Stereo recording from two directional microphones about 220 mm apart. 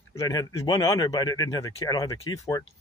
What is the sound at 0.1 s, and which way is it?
Speech, 15° left (ahead or behind).